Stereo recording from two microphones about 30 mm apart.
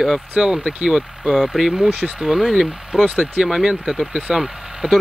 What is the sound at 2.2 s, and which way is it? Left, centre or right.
Speech, centre.